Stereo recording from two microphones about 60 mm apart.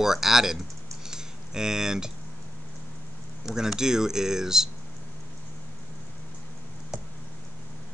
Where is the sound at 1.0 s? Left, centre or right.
Centre.